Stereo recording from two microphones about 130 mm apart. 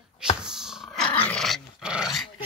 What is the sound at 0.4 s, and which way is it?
Dog, 5° right (ahead or behind).